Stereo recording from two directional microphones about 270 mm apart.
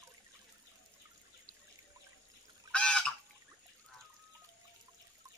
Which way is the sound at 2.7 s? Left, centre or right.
Centre.